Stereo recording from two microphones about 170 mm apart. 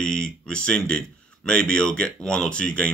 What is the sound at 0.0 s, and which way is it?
Speech, 5° left (ahead or behind).